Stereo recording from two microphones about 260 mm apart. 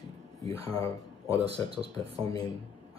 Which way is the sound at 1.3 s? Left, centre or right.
Right.